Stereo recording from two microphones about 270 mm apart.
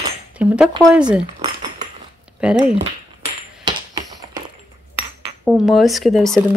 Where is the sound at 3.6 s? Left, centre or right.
Centre.